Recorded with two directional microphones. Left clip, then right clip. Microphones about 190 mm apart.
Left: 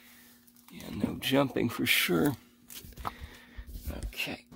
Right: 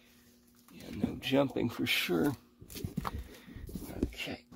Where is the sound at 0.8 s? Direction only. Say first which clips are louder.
Left 3 dB; 30° left (ahead or behind).